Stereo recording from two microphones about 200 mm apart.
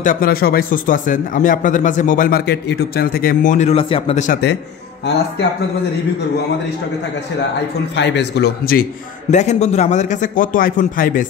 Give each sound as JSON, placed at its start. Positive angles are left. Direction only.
{"t": 0.0, "sound": "a man's voice", "side_deg": 45}
{"t": 4.3, "sound": "a man's voice", "side_deg": 55}
{"t": 8.0, "sound": "a man's voice", "side_deg": 55}
{"t": 9.3, "sound": "a man's voice", "side_deg": 35}